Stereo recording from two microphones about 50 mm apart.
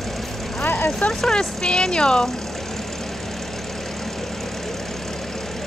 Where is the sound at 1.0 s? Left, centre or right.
Centre.